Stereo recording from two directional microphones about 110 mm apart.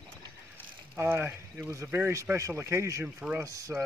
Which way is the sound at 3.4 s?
30° right (ahead or behind).